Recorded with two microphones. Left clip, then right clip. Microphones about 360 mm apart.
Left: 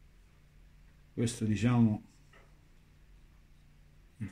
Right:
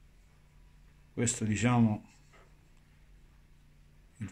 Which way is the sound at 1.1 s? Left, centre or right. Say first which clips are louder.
Right 2 dB; right.